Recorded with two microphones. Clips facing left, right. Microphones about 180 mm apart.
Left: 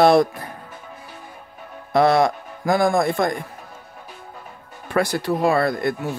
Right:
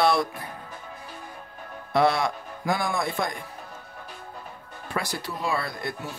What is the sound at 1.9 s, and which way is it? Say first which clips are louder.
Speech: left 6 dB; 45° left (ahead or behind).